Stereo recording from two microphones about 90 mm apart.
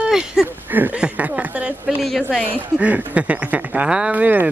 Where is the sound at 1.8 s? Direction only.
Centre (ahead or behind).